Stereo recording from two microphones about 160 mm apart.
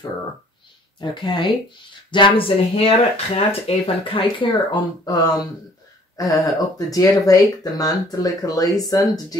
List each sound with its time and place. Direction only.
1.2 s speech: 30° left (ahead or behind)